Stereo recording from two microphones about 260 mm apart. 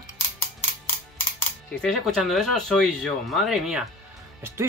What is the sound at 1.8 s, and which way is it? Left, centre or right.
Speech, centre.